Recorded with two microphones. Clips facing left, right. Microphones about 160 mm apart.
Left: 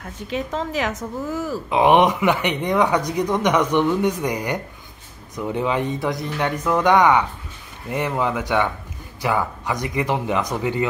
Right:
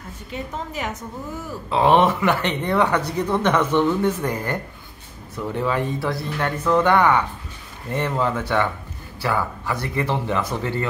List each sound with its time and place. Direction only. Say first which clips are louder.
0.0 s a woman's voice: left 5 dB; 90° left
1.7 s speech: left 1 dB; 15° left (ahead or behind)